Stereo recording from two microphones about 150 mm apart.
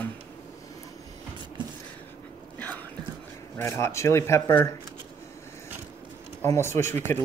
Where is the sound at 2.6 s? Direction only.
10° left (ahead or behind).